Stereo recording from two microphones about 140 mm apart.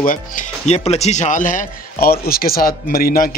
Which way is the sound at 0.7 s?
50° left (ahead or behind).